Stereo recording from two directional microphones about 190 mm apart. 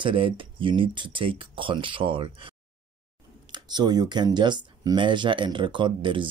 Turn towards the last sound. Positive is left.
turn(degrees=-25)  # may be behind; listen again after turning